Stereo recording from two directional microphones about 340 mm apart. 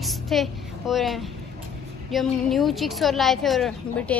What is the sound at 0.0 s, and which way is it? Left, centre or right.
A woman's voice, centre.